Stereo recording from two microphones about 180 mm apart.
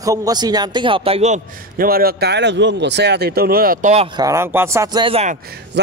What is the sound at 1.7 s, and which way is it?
Speech, 55° right (ahead or behind).